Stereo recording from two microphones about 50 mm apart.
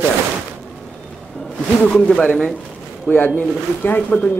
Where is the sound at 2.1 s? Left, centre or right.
Centre.